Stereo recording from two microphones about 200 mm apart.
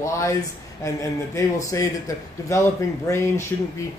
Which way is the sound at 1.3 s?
15° left (ahead or behind).